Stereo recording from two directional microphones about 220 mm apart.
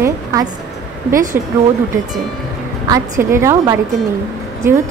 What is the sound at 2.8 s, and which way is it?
Speech, 15° right (ahead or behind).